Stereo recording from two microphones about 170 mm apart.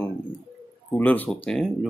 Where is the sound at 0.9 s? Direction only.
10° left (ahead or behind).